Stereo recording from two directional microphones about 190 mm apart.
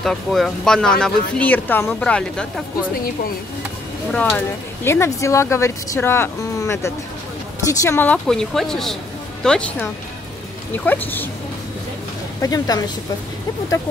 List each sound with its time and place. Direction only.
0.0 s speech: centre (ahead or behind)
4.1 s speech: 5° left (ahead or behind)
12.4 s a woman's voice: 20° left (ahead or behind)